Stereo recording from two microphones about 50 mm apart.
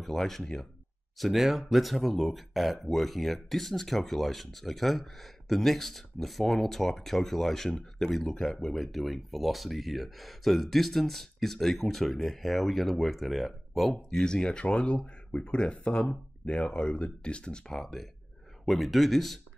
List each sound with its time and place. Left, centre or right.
0.0 s speech: centre
1.1 s speech: centre
14.1 s speech: centre